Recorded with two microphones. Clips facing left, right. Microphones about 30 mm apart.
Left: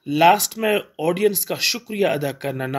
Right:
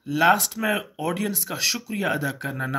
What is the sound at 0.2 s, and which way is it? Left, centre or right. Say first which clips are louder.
Speech: left 4 dB; left.